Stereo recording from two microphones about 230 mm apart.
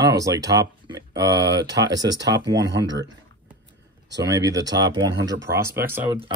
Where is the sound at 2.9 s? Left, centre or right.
Centre.